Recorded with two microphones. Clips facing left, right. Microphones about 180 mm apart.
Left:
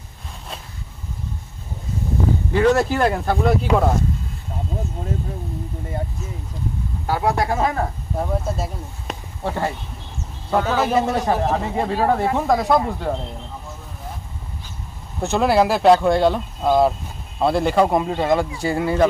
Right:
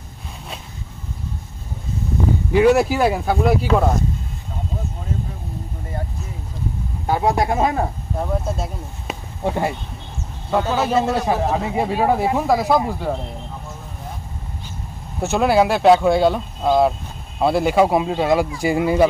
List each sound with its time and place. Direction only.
2.5 s speech: 10° right (ahead or behind)
7.1 s speech: 20° right (ahead or behind)
8.2 s speech: centre (ahead or behind)
9.4 s speech: 15° right (ahead or behind)
10.9 s speech: 10° left (ahead or behind)
11.1 s speech: 5° right (ahead or behind)
15.1 s speech: 5° right (ahead or behind)